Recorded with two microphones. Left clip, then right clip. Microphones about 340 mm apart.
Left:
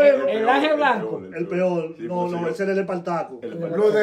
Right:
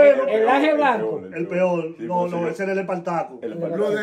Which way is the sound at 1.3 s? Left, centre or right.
Right.